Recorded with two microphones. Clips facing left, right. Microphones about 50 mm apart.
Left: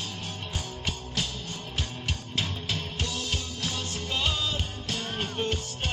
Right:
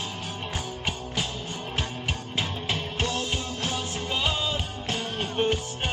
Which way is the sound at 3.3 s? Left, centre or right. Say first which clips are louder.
Right 3 dB; right.